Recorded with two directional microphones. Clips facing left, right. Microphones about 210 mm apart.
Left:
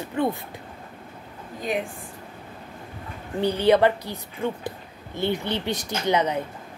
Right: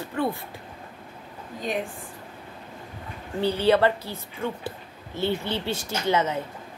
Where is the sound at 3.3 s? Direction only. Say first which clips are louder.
Left 2 dB; 15° left (ahead or behind).